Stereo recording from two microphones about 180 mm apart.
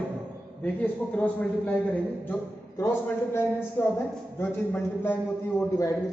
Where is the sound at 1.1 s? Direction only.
5° left (ahead or behind).